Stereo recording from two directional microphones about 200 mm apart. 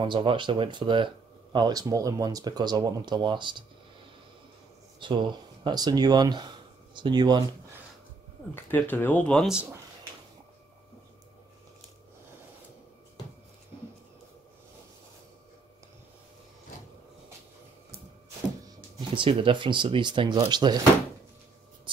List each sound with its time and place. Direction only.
0.0 s speech: 25° right (ahead or behind)
5.0 s speech: 25° right (ahead or behind)
8.5 s speech: 10° left (ahead or behind); by 9.8 s 5° right (ahead or behind)
18.9 s speech: 25° right (ahead or behind)
21.9 s writing: 25° right (ahead or behind)